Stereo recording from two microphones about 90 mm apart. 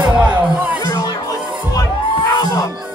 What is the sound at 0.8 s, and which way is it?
Music, 45° left (ahead or behind).